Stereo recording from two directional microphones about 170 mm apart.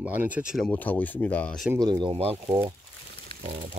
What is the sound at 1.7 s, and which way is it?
Speech, 25° right (ahead or behind).